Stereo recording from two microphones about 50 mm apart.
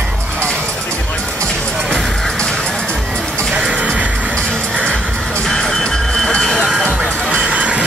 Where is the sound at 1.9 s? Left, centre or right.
Centre.